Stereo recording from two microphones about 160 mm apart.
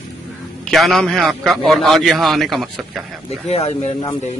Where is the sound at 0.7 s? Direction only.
Centre (ahead or behind).